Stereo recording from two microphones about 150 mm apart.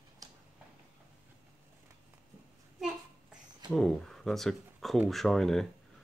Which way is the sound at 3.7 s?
Centre (ahead or behind).